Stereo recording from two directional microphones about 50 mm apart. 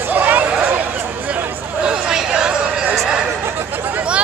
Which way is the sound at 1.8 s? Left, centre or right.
Centre.